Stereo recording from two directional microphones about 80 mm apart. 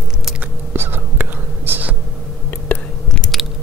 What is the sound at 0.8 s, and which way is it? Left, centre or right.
Whispering, right.